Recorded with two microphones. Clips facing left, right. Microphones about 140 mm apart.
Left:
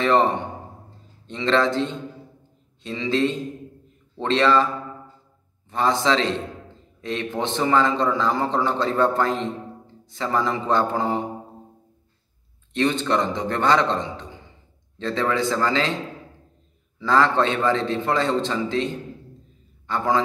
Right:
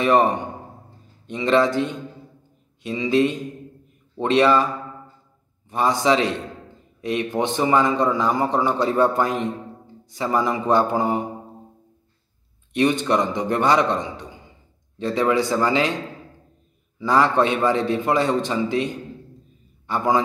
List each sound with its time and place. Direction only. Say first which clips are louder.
0.0 s a man's voice: right 1 dB; 15° right (ahead or behind)
2.8 s a man's voice: right 3 dB; 15° right (ahead or behind)
5.7 s a man's voice: right 2 dB; 15° right (ahead or behind)
12.7 s a man's voice: right 2 dB; 15° right (ahead or behind)
17.0 s a man's voice: right 1 dB; 15° right (ahead or behind)